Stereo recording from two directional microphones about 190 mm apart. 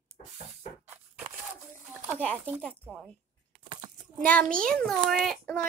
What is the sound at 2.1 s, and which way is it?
Speech, 10° left (ahead or behind).